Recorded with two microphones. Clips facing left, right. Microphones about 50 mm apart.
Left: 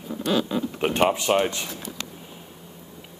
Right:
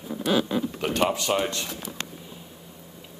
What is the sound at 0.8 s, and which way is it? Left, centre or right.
Speech, left.